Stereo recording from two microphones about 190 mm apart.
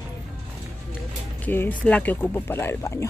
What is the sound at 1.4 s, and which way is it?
Speech, 10° left (ahead or behind).